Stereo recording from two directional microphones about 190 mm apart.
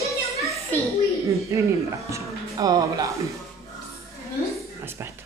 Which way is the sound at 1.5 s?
15° right (ahead or behind).